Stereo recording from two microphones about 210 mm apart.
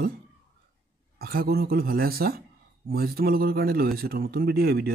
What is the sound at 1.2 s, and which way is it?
A man's voice, 45° right (ahead or behind).